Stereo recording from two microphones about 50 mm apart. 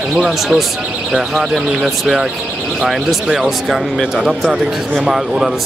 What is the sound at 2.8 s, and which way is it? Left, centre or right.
Speech, centre.